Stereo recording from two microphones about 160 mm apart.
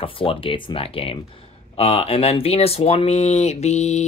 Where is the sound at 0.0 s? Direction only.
35° left (ahead or behind).